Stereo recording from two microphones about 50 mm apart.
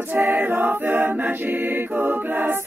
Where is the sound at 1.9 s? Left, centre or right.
Right.